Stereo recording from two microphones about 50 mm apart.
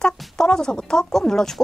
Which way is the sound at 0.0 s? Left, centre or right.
Centre.